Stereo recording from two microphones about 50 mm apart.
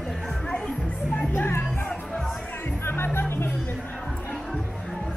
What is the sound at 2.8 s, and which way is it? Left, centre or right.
Music, left.